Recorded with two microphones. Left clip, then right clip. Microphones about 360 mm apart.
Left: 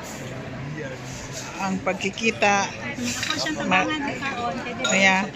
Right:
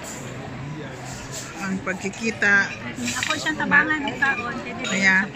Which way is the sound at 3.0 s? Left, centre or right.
Centre.